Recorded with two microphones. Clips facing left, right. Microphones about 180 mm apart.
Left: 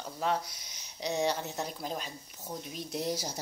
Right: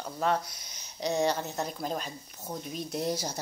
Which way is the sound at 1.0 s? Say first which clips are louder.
Right 3 dB; 45° right (ahead or behind).